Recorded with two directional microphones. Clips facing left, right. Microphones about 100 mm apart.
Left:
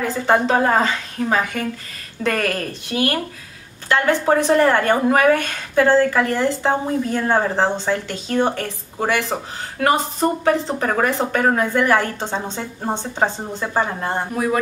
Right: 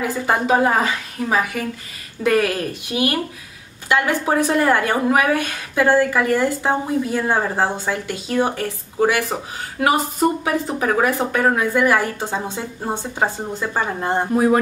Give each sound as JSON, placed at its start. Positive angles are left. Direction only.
{"t": 0.0, "sound": "a woman's voice", "side_deg": -10}
{"t": 14.0, "sound": "speech", "side_deg": -25}